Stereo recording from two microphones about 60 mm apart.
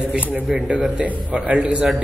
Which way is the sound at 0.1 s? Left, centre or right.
Right.